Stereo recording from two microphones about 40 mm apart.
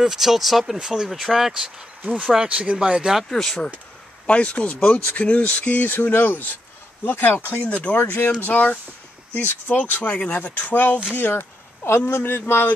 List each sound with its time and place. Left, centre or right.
0.0 s speech: centre
2.4 s speech: right
3.3 s speech: centre
4.3 s speech: left
6.0 s speech: left
7.6 s speech: left
7.9 s speech: left
8.5 s speech: left
10.1 s speech: left
10.7 s speech: left